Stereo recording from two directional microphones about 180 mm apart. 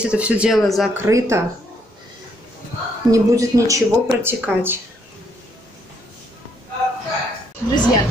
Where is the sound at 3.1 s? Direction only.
20° right (ahead or behind).